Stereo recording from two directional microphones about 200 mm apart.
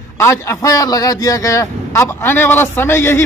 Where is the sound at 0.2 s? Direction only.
15° left (ahead or behind).